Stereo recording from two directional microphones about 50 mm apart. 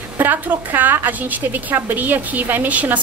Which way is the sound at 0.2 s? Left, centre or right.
Right.